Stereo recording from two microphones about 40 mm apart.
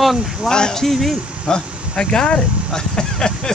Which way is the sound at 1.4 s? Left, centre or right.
Centre.